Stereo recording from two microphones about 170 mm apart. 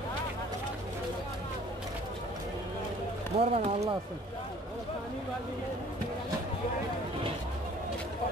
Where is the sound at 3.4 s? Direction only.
35° right (ahead or behind).